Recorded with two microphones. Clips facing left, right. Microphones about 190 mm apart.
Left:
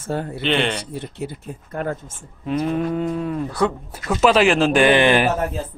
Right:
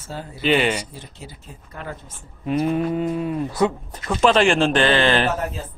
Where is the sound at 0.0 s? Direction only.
60° left (ahead or behind).